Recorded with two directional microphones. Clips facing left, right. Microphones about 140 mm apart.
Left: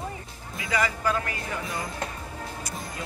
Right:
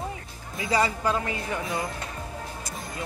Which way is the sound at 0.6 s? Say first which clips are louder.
Right 2 dB; 30° right (ahead or behind).